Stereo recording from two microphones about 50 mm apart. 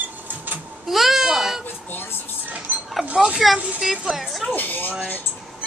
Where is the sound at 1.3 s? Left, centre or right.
Centre.